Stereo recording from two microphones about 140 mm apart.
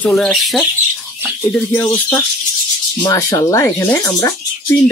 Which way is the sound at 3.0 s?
25° left (ahead or behind).